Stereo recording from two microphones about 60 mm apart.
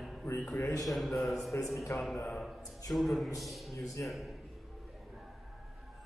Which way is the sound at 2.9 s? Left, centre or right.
Centre.